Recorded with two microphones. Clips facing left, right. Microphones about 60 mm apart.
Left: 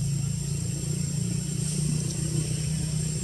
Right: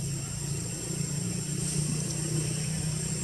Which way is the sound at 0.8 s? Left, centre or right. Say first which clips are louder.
Left 2 dB; right.